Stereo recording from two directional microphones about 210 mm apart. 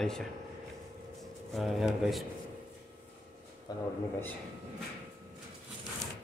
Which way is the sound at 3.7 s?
20° left (ahead or behind).